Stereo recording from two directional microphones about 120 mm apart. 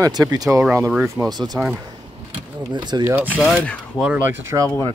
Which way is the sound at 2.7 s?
35° right (ahead or behind).